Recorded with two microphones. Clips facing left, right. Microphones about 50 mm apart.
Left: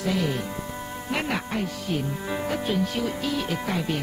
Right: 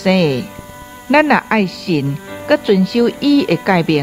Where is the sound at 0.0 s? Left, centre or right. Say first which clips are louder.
Right 12 dB; right.